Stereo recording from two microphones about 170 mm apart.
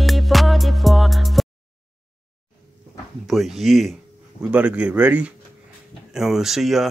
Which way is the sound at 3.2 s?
Centre (ahead or behind).